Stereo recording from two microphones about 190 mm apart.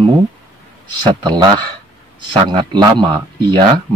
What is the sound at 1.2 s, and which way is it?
Speech, 20° right (ahead or behind).